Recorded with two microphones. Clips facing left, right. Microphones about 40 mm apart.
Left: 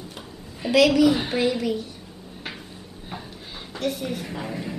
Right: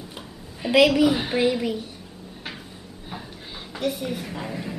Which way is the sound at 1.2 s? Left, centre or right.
Centre.